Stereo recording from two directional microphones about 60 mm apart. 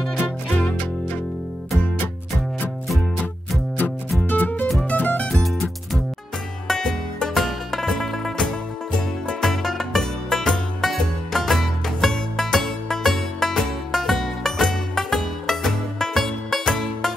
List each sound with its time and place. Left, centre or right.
4.3 s music: left
5.3 s music: centre